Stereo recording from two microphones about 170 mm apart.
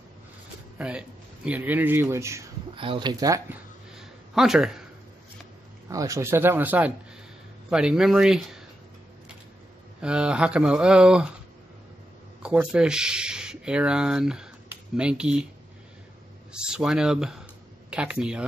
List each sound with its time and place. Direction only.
0.7 s speech: 5° right (ahead or behind)
2.7 s speech: 30° right (ahead or behind)
3.9 s a sound: 5° right (ahead or behind)
5.9 s speech: 20° right (ahead or behind); by 8.6 s centre (ahead or behind)
9.9 s speech: 5° right (ahead or behind)
12.4 s speech: 5° right (ahead or behind)
16.5 s speech: 5° right (ahead or behind)